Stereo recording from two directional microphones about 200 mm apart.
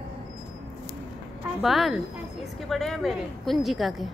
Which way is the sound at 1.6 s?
Centre (ahead or behind).